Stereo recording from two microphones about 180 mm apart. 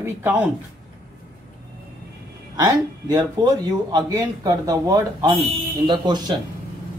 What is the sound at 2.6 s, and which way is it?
Speech, 20° right (ahead or behind).